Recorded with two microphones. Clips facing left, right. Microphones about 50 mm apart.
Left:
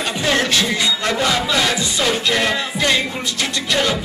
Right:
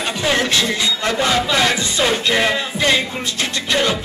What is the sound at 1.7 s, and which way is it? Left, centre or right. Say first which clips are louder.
Music: right 1 dB; right.